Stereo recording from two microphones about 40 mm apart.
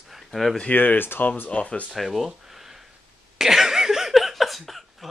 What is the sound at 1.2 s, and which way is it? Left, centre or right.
Speech, left.